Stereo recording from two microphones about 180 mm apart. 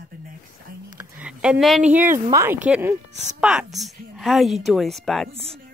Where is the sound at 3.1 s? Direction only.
40° right (ahead or behind).